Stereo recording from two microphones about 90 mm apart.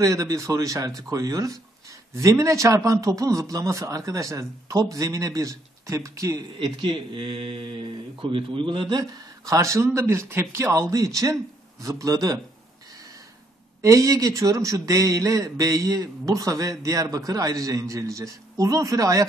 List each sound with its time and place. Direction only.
0.0 s a man's voice: 40° right (ahead or behind)
6.6 s speech: 65° right (ahead or behind)
9.5 s a man's voice: 35° right (ahead or behind)
13.7 s a man's voice: 35° right (ahead or behind)